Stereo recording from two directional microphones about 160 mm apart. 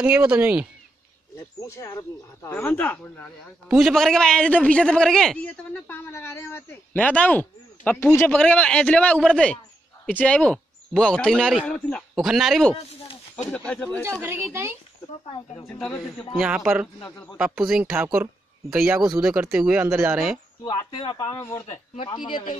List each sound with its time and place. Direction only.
0.0 s speech: 5° right (ahead or behind)
1.3 s a man's voice: 15° left (ahead or behind)
3.6 s a man's voice: centre (ahead or behind)
12.7 s a sound: 40° left (ahead or behind)
13.7 s a man's voice: 10° left (ahead or behind)
14.2 s speech: 15° right (ahead or behind)
15.2 s speech: 30° left (ahead or behind)
15.7 s a man's voice: 15° left (ahead or behind)
16.3 s a man's voice: 5° right (ahead or behind)
20.6 s speech: 30° left (ahead or behind)
21.4 s speech: 20° left (ahead or behind)
22.1 s a man's voice: 30° left (ahead or behind)